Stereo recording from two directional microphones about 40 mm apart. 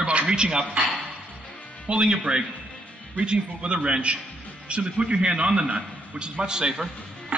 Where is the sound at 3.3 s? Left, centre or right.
Right.